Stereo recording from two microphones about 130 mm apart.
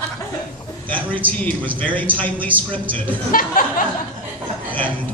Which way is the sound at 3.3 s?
90° left.